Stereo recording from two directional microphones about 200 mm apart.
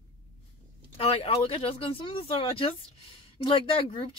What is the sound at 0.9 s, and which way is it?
Speech, 30° left (ahead or behind).